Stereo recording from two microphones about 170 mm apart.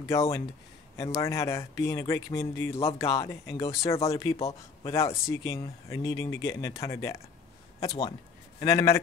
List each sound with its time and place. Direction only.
0.1 s speech: 20° left (ahead or behind)